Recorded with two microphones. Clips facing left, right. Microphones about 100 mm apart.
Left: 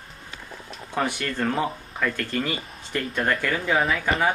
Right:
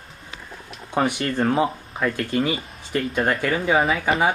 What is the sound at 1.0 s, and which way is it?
Speech, 15° right (ahead or behind).